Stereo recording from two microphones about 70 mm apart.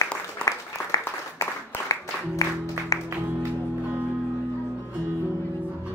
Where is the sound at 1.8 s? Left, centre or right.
Left.